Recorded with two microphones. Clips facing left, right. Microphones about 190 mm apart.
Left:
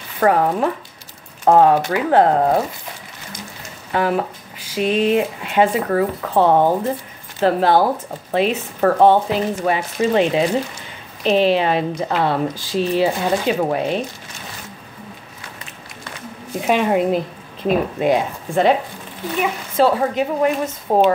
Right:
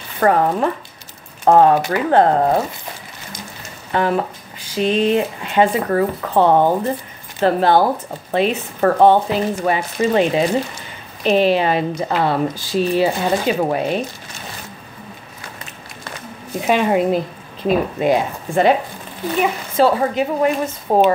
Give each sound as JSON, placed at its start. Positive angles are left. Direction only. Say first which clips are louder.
{"t": 0.2, "sound": "speech", "louder": "right 1 dB", "side_deg": 5}
{"t": 3.9, "sound": "speech", "louder": "right 1 dB", "side_deg": 5}
{"t": 15.4, "sound": "run", "louder": "right 3 dB", "side_deg": -40}
{"t": 16.5, "sound": "speech", "louder": "right 1 dB", "side_deg": 0}
{"t": 19.8, "sound": "speech", "louder": "right 1 dB", "side_deg": 0}